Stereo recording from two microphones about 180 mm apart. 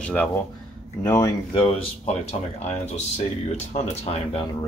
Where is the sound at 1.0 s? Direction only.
20° left (ahead or behind).